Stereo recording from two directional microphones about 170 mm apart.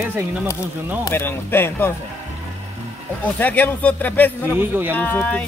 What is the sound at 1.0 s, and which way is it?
Speech, 15° left (ahead or behind).